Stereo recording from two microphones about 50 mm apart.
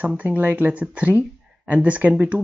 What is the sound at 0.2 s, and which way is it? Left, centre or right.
Speech, right.